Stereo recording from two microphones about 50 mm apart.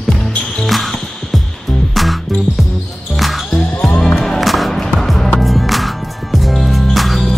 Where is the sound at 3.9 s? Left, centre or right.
Centre.